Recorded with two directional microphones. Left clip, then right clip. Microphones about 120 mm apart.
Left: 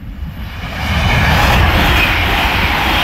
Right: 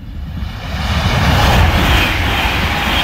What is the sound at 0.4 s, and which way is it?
Vehicle, 10° right (ahead or behind).